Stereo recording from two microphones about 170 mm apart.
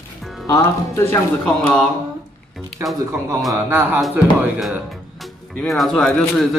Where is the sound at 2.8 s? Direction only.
15° right (ahead or behind).